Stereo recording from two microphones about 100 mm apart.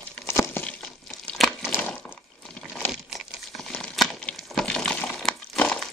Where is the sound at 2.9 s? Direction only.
5° right (ahead or behind).